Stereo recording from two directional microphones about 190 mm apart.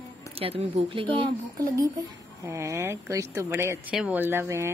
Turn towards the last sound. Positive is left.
turn(degrees=-15)  # may be behind; listen again after turning